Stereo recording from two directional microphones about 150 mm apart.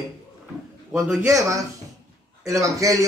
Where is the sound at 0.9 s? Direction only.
Centre (ahead or behind).